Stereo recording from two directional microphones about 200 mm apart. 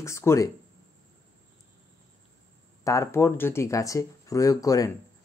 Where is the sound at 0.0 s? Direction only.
15° left (ahead or behind).